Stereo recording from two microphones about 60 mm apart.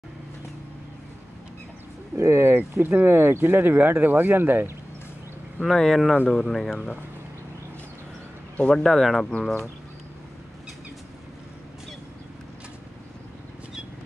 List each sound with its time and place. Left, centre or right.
2.1 s speech: right
5.6 s speech: centre
8.5 s speech: centre
8.8 s speech: centre